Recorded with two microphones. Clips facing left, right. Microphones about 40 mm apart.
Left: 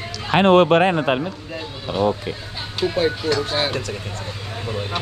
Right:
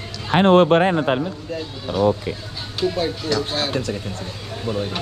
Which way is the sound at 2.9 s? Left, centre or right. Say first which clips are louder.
Left 4 dB; left.